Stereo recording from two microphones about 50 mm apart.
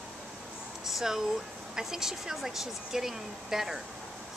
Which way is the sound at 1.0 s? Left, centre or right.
Centre.